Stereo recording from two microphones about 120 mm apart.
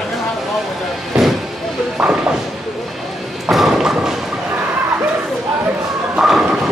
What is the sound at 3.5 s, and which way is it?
Thump, 5° right (ahead or behind).